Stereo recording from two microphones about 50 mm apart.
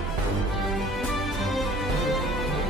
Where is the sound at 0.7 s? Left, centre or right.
Centre.